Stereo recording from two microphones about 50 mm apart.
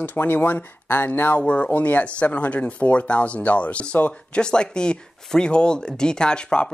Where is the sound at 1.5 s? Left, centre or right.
Left.